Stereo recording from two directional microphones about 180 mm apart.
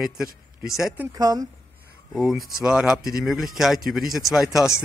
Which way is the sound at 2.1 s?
Centre (ahead or behind).